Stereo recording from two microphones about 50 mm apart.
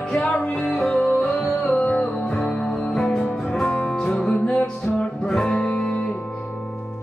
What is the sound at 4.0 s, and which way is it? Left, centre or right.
Music, left.